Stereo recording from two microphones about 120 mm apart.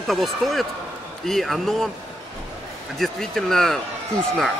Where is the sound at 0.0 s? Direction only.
Centre (ahead or behind).